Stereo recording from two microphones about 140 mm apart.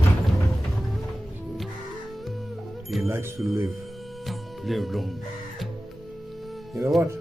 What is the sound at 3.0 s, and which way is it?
Speech, 20° right (ahead or behind).